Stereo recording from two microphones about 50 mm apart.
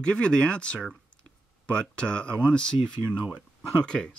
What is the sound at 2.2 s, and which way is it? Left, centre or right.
Speech, right.